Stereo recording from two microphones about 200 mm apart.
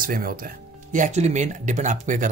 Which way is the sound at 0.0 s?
45° right (ahead or behind).